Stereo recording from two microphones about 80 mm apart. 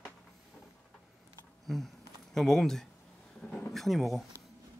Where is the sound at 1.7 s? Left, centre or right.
Centre.